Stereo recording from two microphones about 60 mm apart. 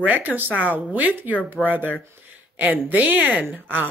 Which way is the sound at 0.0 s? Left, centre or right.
Right.